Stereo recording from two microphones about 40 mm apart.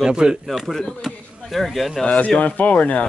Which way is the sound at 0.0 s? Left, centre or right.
Centre.